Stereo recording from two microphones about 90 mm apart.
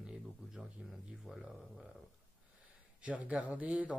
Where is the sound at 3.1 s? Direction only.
15° right (ahead or behind).